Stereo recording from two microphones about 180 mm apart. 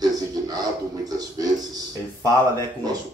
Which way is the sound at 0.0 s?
20° right (ahead or behind).